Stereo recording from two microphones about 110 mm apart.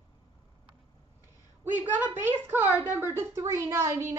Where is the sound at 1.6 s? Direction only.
20° right (ahead or behind).